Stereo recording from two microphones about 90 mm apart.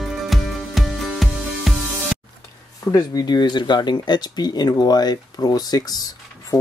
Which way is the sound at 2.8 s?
40° left (ahead or behind).